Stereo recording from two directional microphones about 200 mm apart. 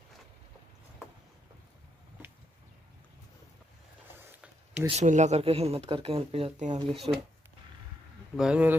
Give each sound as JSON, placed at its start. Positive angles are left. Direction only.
{"t": 4.7, "sound": "speech", "side_deg": -35}
{"t": 8.4, "sound": "speech", "side_deg": -5}